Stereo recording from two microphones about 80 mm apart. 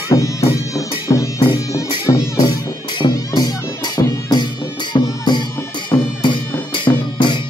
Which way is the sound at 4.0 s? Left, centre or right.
Left.